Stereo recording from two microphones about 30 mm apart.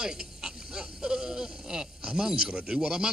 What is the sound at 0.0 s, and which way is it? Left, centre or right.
Goat, right.